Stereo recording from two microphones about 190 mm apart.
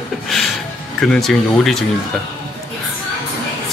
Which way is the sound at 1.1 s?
Centre (ahead or behind).